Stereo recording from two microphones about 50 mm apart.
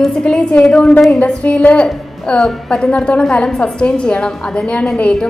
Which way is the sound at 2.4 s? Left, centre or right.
Centre.